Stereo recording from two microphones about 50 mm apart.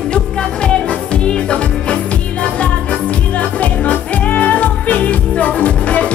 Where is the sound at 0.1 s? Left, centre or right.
Centre.